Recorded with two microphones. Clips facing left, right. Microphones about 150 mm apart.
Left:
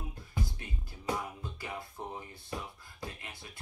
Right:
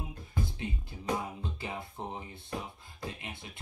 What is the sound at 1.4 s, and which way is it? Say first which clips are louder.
Music: right 2 dB; 25° right (ahead or behind).